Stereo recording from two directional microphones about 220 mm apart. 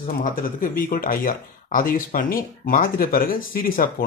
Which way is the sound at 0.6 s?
40° left (ahead or behind).